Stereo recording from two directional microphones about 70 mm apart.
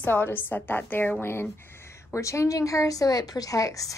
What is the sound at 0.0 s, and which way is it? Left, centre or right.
A woman's voice, left.